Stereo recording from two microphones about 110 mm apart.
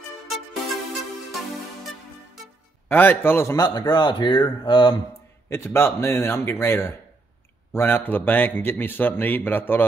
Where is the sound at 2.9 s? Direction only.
20° left (ahead or behind).